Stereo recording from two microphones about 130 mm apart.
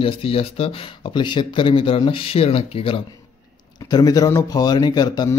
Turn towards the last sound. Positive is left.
turn(degrees=30)  # may be behind; listen again after turning